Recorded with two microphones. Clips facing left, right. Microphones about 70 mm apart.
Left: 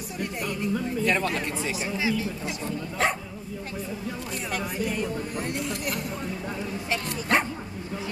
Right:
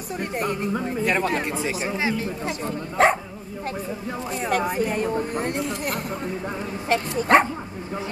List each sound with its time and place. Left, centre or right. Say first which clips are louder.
0.2 s speech: right 4 dB; right
0.7 s speech: even; right
1.7 s speech: even; right
4.5 s speech: right 7 dB; right